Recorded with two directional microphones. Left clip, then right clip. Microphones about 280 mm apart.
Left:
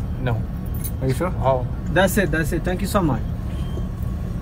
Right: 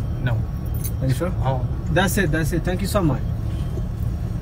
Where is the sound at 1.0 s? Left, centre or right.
Centre.